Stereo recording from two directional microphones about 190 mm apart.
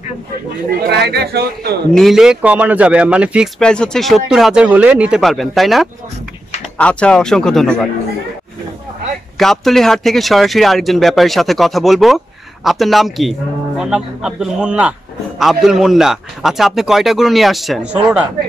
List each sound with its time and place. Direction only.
0.8 s speech: 60° right (ahead or behind)
2.0 s speech: centre (ahead or behind)
9.4 s speech: centre (ahead or behind)